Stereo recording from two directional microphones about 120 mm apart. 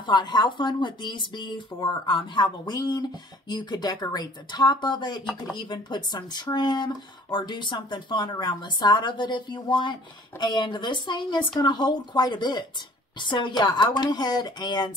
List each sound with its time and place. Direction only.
0.0 s speech: 35° left (ahead or behind)